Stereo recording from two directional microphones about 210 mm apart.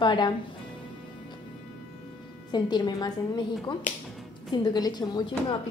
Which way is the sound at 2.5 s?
20° left (ahead or behind).